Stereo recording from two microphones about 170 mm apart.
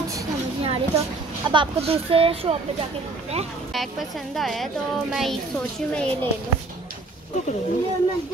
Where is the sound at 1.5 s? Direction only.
30° right (ahead or behind).